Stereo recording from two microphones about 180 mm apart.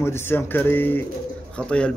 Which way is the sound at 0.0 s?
15° left (ahead or behind).